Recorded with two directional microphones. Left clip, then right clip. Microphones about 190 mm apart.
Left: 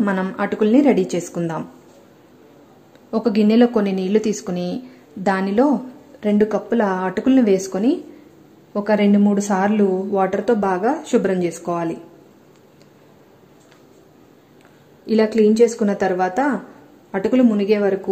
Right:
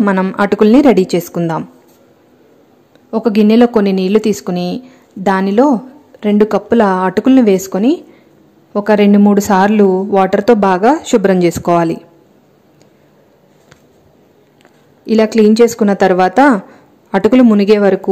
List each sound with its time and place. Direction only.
0.0 s speech: 20° right (ahead or behind)
3.1 s speech: 20° right (ahead or behind)
15.0 s speech: 20° right (ahead or behind)